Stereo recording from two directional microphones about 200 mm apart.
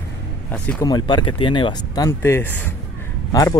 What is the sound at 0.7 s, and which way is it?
Speech, 20° left (ahead or behind).